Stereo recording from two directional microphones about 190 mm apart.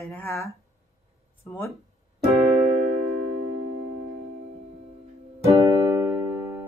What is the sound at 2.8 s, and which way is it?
Music, 40° right (ahead or behind).